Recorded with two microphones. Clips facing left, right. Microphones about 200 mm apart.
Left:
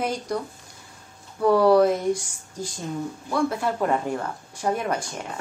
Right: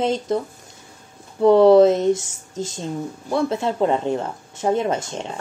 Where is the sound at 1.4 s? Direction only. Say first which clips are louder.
Right 6 dB; 25° right (ahead or behind).